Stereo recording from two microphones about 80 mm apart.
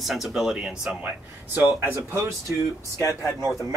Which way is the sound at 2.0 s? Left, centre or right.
Right.